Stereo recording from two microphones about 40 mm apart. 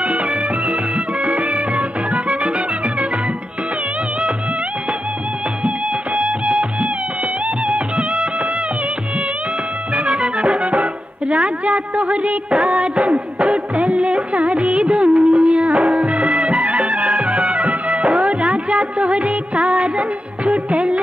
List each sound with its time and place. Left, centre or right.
0.7 s music: right
6.1 s music: right
9.9 s music: right